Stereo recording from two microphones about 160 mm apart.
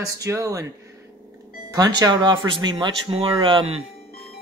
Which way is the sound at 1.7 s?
25° right (ahead or behind).